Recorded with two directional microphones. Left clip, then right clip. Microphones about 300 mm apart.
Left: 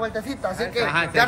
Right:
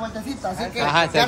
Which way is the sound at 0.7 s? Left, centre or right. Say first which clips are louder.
Right 3 dB; centre.